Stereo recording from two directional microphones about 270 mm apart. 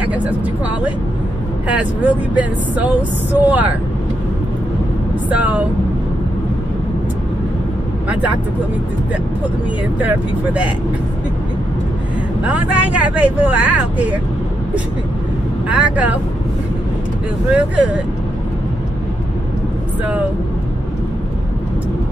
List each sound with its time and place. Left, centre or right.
0.0 s speech: centre
1.7 s speech: centre
5.3 s speech: centre
8.1 s speech: centre
9.9 s speech: centre
12.5 s speech: centre
15.7 s speech: centre
17.5 s speech: centre